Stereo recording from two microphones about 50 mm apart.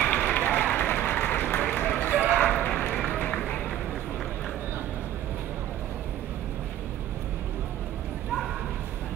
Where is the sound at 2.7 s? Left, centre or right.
Left.